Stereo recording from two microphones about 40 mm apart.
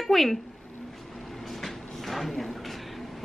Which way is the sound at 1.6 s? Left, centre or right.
Centre.